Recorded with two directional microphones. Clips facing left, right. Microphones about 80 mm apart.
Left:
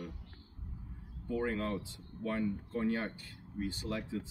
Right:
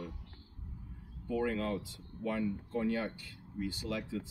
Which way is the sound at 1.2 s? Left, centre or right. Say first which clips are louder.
Right 1 dB; left.